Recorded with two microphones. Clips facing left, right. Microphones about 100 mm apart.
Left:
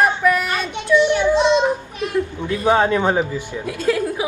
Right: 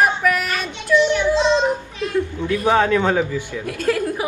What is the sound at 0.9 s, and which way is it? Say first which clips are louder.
Baby cry: left 1 dB; 15° left (ahead or behind).